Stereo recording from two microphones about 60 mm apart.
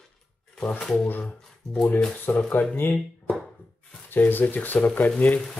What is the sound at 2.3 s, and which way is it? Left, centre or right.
Speech, left.